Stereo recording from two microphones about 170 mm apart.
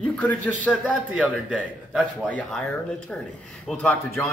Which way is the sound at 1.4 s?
5° right (ahead or behind).